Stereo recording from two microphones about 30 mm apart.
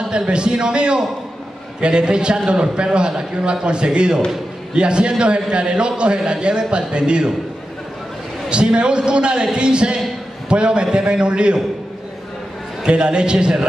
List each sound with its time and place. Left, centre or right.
0.3 s a man's voice: right
8.5 s a man's voice: right
12.8 s a man's voice: right